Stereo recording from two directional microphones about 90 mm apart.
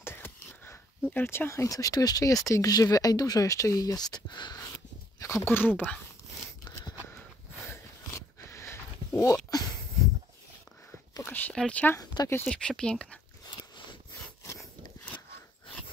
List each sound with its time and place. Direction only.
0.0 s a sound: 25° left (ahead or behind); by 2.4 s 40° left (ahead or behind)
2.5 s speech: 40° left (ahead or behind)
5.2 s speech: 35° left (ahead or behind)
5.5 s speech: 20° left (ahead or behind)
7.1 s a sound: 25° left (ahead or behind)
11.2 s speech: 20° left (ahead or behind)
12.0 s speech: 50° left (ahead or behind)
12.4 s speech: 10° left (ahead or behind)